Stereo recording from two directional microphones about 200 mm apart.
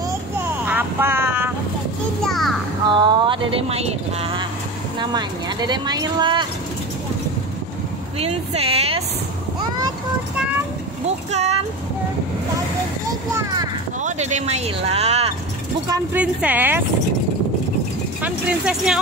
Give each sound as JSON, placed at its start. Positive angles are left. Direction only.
{"t": 0.7, "sound": "vehicle", "side_deg": -10}
{"t": 2.2, "sound": "music", "side_deg": 0}
{"t": 2.9, "sound": "speech", "side_deg": -20}
{"t": 8.2, "sound": "speech", "side_deg": -30}
{"t": 11.3, "sound": "speech", "side_deg": -35}
{"t": 14.0, "sound": "speech", "side_deg": -35}
{"t": 15.9, "sound": "speech", "side_deg": -10}
{"t": 18.2, "sound": "speech", "side_deg": -5}